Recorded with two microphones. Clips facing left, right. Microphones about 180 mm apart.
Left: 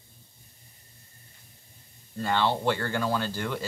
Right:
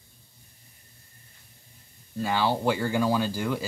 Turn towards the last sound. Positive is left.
turn(degrees=-10)  # may be behind; listen again after turning